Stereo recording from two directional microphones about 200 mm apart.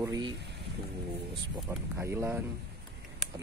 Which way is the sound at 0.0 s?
15° right (ahead or behind).